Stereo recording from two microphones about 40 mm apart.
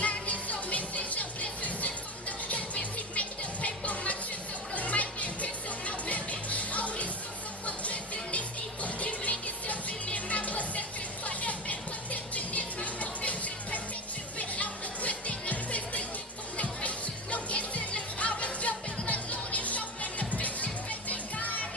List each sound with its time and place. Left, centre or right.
0.0 s music: left